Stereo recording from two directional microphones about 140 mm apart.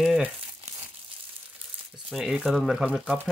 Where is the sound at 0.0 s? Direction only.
5° right (ahead or behind).